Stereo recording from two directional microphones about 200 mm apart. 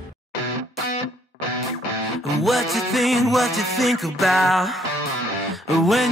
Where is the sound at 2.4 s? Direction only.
Centre (ahead or behind).